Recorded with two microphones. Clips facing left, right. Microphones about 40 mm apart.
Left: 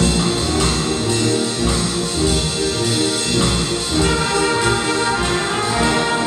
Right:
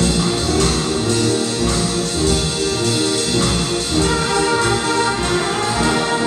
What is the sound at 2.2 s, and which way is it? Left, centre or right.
Music, centre.